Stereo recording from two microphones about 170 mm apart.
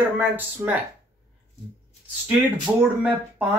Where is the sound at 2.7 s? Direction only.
10° right (ahead or behind).